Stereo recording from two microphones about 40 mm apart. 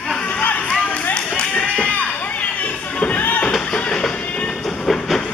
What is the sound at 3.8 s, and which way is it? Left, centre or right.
Music, left.